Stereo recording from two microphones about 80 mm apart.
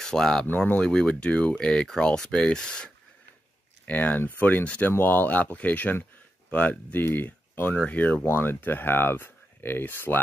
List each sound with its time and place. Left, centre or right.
0.0 s speech: centre
3.8 s speech: centre